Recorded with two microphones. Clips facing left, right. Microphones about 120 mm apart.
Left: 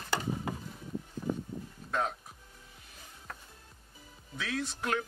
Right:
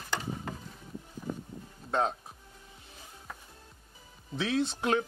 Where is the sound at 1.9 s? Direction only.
30° right (ahead or behind).